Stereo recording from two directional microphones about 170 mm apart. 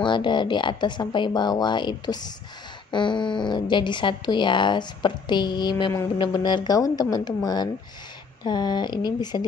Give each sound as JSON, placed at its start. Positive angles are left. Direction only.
{"t": 0.0, "sound": "speech", "side_deg": 25}